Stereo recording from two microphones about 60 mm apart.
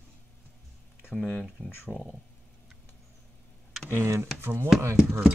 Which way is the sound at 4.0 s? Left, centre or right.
Right.